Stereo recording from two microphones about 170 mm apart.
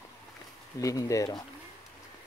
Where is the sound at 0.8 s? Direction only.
20° left (ahead or behind).